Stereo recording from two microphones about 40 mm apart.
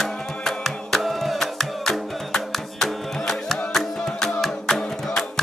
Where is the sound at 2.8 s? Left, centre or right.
Centre.